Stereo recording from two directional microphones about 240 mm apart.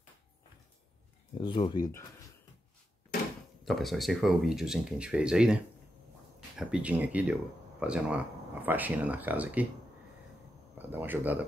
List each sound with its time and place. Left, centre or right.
1.4 s speech: left
3.6 s speech: centre
10.8 s speech: centre